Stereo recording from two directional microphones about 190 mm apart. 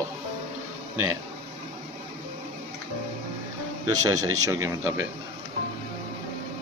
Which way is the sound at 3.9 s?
20° right (ahead or behind).